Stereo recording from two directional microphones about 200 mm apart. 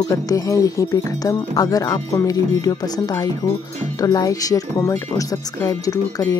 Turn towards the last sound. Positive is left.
turn(degrees=20)  # may be behind; listen again after turning